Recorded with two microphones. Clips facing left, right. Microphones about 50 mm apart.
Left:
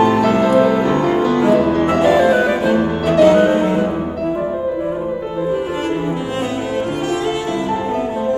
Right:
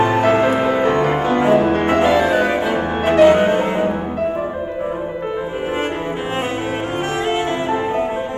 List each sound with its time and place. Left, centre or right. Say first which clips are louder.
0.0 s music: left 1 dB; right